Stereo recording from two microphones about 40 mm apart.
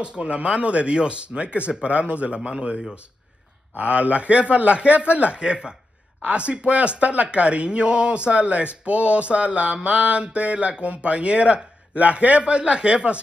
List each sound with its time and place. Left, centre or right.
0.0 s speech: right
3.7 s speech: right
5.4 s speech: right